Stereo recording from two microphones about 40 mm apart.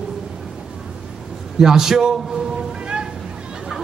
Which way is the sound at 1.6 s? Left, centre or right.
Centre.